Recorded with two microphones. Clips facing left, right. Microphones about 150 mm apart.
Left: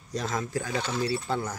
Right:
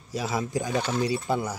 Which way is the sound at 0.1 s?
10° right (ahead or behind).